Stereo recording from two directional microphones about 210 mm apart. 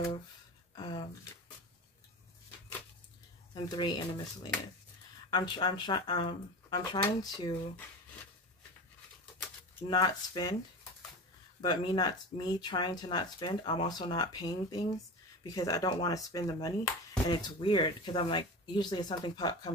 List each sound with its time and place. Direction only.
0.7 s a sound: 20° left (ahead or behind)
3.5 s speech: 20° left (ahead or behind)
9.8 s speech: 20° left (ahead or behind)